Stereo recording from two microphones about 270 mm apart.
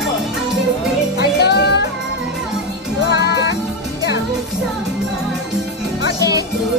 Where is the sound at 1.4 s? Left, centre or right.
Left.